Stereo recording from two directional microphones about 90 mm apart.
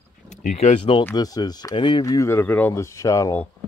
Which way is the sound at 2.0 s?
40° left (ahead or behind).